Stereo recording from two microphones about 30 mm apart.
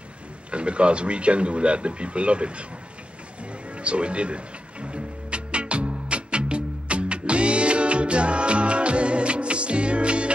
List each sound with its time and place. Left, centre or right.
0.5 s speech: right
3.7 s music: right